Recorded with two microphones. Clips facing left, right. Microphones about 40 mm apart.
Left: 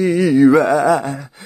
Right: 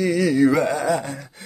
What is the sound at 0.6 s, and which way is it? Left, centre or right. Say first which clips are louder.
Speech: left 7 dB; left.